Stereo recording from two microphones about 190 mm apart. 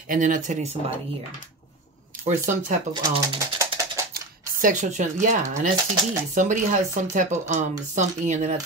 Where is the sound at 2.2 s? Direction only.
40° right (ahead or behind).